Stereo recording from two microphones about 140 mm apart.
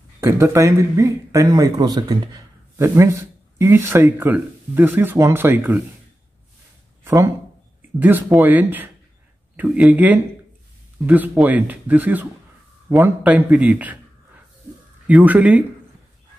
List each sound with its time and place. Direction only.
0.2 s a man's voice: 20° right (ahead or behind)
8.0 s speech: 10° right (ahead or behind)
15.0 s speech: 10° right (ahead or behind)